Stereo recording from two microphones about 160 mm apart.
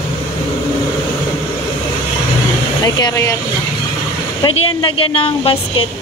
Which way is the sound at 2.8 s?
20° left (ahead or behind).